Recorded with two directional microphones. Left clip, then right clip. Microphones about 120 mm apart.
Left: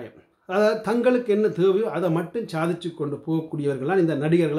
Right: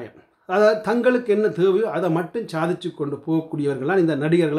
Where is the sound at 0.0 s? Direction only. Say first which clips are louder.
Right 3 dB; 25° right (ahead or behind).